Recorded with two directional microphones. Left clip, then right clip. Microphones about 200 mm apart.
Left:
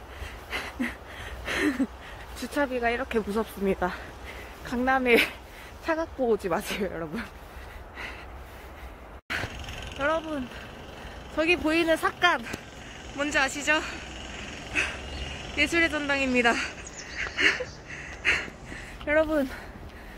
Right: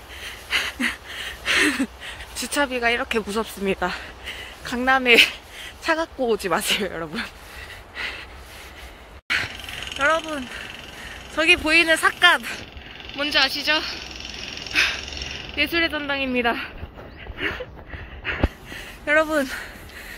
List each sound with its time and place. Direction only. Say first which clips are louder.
0.2 s a sound: right 10 dB; 5° left (ahead or behind)
4.6 s speech: right 6 dB; 5° right (ahead or behind)
9.3 s a sound: right 8 dB; 15° left (ahead or behind)
9.9 s speech: right 6 dB; 5° right (ahead or behind)
11.6 s speech: right 7 dB; 10° left (ahead or behind)
12.0 s speech: right 7 dB; 5° right (ahead or behind)
14.7 s dog: right 8 dB; 5° right (ahead or behind)
15.5 s speech: right 2 dB; 5° left (ahead or behind)
17.2 s a sound: left 4 dB; 10° left (ahead or behind)
19.0 s speech: right 5 dB; centre (ahead or behind)